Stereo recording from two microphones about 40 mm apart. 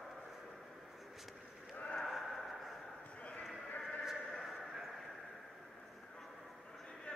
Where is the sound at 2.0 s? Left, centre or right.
Centre.